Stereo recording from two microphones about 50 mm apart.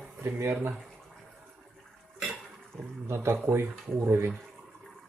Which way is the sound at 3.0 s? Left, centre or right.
Right.